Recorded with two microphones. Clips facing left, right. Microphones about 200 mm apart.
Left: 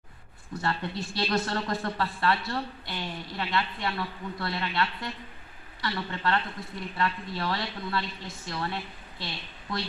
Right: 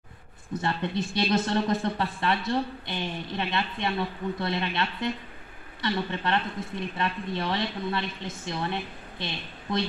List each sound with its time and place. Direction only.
0.5 s a woman's voice: 20° right (ahead or behind)